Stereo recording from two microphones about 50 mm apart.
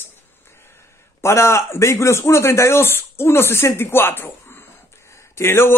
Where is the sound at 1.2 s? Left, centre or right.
Left.